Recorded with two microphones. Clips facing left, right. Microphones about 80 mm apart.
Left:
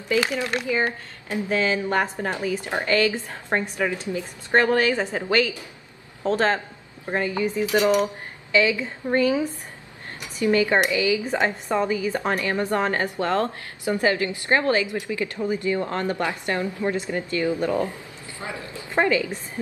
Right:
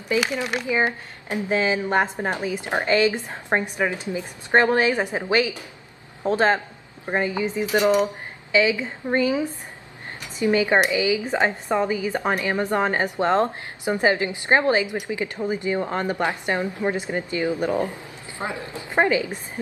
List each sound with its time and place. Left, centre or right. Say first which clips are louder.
0.1 s a woman's voice: even; centre
10.4 s a woman's voice: right 1 dB; centre